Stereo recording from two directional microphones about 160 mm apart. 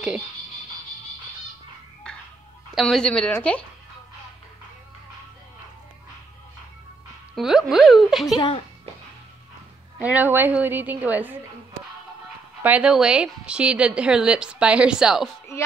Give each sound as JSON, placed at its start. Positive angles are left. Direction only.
{"t": 2.1, "sound": "music", "side_deg": 5}
{"t": 2.7, "sound": "speech", "side_deg": 0}
{"t": 7.3, "sound": "speech", "side_deg": -5}
{"t": 8.4, "sound": "speech", "side_deg": 35}
{"t": 9.9, "sound": "a woman's voice", "side_deg": -10}
{"t": 12.6, "sound": "a woman's voice", "side_deg": -5}